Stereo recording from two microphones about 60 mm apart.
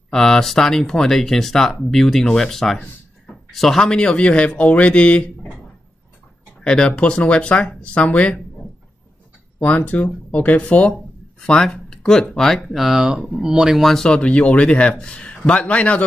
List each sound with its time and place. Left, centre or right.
0.1 s a man's voice: centre
6.6 s a man's voice: centre
9.6 s speech: left